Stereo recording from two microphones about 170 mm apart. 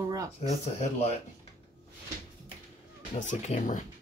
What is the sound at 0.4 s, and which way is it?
Speech, 40° left (ahead or behind).